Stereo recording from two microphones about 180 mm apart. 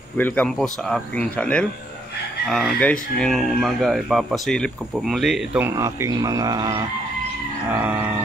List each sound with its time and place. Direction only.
0.2 s speech: 5° left (ahead or behind)
5.8 s speech: 15° right (ahead or behind)
7.8 s a sound: 10° right (ahead or behind)